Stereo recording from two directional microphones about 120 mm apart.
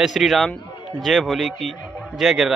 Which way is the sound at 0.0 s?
Centre (ahead or behind).